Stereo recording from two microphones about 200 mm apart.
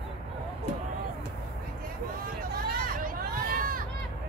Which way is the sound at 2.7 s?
45° right (ahead or behind).